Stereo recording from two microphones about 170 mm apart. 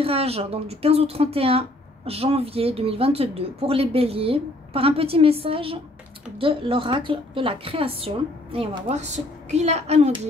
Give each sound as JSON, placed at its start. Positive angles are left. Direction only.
{"t": 0.0, "sound": "speech", "side_deg": -35}